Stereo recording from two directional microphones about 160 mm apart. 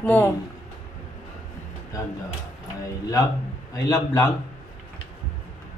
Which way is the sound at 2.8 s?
20° left (ahead or behind).